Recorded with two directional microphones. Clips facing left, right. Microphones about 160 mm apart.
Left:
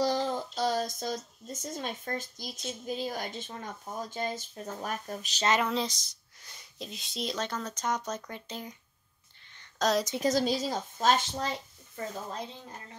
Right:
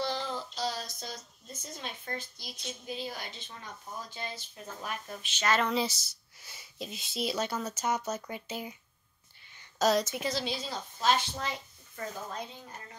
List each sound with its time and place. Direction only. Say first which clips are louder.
0.0 s speech: left 5 dB; 45° left (ahead or behind)
5.6 s speech: even; centre (ahead or behind)
9.6 s a sound: right 1 dB; 5° right (ahead or behind)
10.2 s speech: left 7 dB; 45° left (ahead or behind)
11.9 s speech: left 2 dB; 25° left (ahead or behind)